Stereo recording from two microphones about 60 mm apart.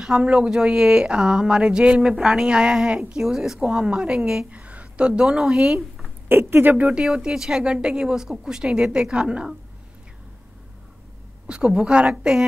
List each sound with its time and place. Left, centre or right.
0.0 s speech: centre
6.2 s speech: right
7.1 s speech: centre
11.4 s speech: centre